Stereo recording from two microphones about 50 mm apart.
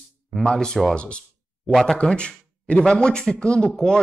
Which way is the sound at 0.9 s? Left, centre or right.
Left.